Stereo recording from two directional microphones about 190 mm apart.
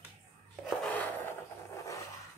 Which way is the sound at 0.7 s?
5° left (ahead or behind).